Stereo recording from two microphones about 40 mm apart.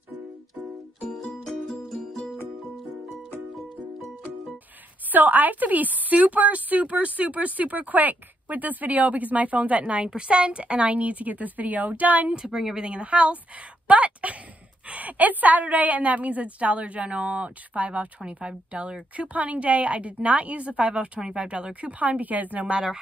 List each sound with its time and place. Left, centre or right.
1.1 s music: centre
5.1 s a woman's voice: right
12.4 s a woman's voice: centre
12.8 s a woman's voice: right
19.1 s a woman's voice: right
22.0 s a woman's voice: right
22.7 s speech: right